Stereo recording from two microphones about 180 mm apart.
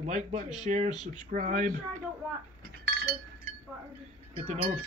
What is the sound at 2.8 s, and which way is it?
Chink, 60° right (ahead or behind).